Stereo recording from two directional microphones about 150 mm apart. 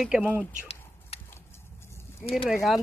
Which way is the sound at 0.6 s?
45° left (ahead or behind).